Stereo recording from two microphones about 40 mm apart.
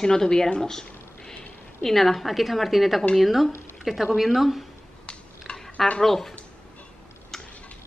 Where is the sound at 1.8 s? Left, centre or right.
Centre.